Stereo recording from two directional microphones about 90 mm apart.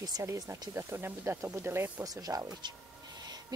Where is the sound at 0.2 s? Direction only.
35° right (ahead or behind).